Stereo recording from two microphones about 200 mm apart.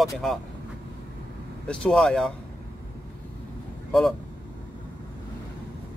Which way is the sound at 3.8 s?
Centre (ahead or behind).